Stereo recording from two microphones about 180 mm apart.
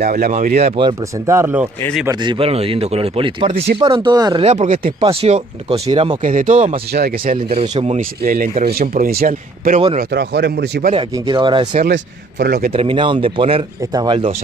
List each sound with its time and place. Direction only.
0.0 s speech: 50° right (ahead or behind); by 1.7 s 10° right (ahead or behind)
2.0 s speech: 25° right (ahead or behind)
4.5 s speech: 45° right (ahead or behind)
5.0 s speech: 35° right (ahead or behind)
6.2 s speech: 45° right (ahead or behind)
6.9 s a man's voice: 60° right (ahead or behind)
9.8 s speech: 35° right (ahead or behind)
10.1 s a man's voice: 65° right (ahead or behind)
11.1 s speech: 25° right (ahead or behind)
11.9 s a man's voice: 65° right (ahead or behind)
12.7 s speech: 30° right (ahead or behind)